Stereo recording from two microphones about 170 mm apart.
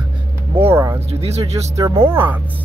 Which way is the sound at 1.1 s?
40° right (ahead or behind).